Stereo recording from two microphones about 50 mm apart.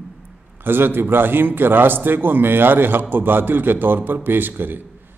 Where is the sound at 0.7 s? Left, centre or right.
Right.